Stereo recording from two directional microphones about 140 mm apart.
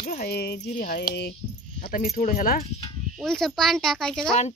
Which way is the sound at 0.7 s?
90° left.